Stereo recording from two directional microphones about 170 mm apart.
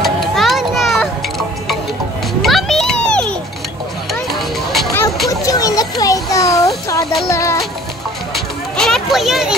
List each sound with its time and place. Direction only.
0.0 s children playing: centre (ahead or behind)
2.4 s children playing: centre (ahead or behind)
4.1 s a sound: centre (ahead or behind)
5.3 s children playing: 20° left (ahead or behind)
7.2 s music: 15° left (ahead or behind)
8.7 s a sound: centre (ahead or behind)